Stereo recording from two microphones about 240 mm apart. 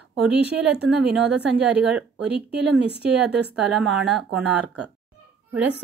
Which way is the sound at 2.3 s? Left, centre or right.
Right.